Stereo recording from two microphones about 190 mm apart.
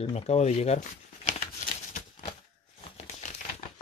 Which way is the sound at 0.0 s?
35° left (ahead or behind).